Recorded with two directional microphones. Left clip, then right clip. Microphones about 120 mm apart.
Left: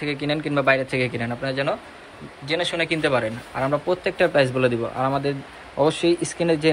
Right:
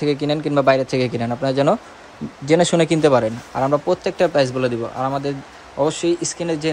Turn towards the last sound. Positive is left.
turn(degrees=-15)  # may be behind; listen again after turning